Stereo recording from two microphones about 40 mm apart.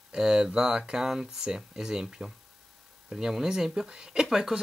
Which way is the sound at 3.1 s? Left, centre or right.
Centre.